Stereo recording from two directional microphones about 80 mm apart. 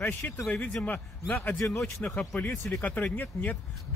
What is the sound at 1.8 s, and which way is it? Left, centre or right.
Speech, centre.